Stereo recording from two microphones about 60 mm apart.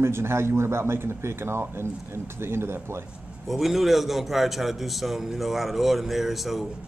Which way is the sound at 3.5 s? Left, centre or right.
Centre.